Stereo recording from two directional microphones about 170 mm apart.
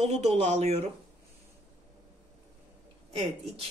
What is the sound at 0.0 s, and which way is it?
Speech, 40° right (ahead or behind).